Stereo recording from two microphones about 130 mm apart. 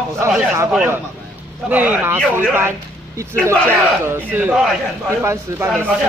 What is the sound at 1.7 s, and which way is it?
Speech, 15° right (ahead or behind).